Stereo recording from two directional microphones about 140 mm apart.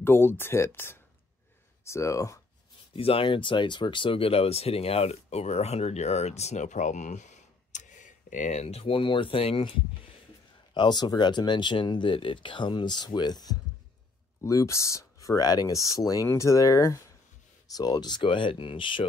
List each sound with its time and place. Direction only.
0.0 s speech: 15° left (ahead or behind)
3.0 s speech: 40° left (ahead or behind)